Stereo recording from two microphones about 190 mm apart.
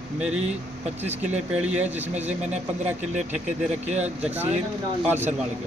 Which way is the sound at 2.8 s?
40° right (ahead or behind).